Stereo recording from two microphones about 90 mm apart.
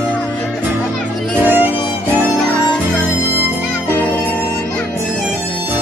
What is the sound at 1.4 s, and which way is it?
Music, 20° right (ahead or behind).